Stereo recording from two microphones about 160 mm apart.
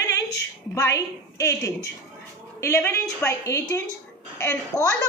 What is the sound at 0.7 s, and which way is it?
A woman's voice, 20° left (ahead or behind).